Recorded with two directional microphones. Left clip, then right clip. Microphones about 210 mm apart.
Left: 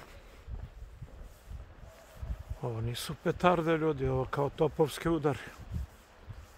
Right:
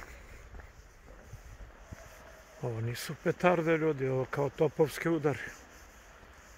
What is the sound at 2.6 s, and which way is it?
Speech, 15° left (ahead or behind).